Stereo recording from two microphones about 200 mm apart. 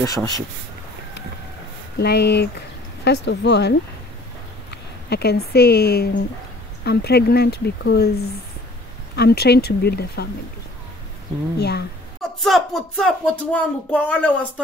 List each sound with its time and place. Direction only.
0.0 s speech: 15° left (ahead or behind)
2.0 s speech: 55° left (ahead or behind)
5.1 s speech: 55° left (ahead or behind)
11.5 s speech: 55° left (ahead or behind)
12.2 s speech: centre (ahead or behind)